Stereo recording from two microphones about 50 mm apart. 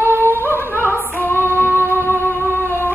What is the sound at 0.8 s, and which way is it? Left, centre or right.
Female singing, right.